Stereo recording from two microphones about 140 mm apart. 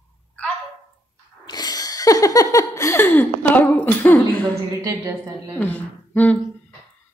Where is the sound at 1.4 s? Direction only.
30° left (ahead or behind); by 4.8 s 15° left (ahead or behind).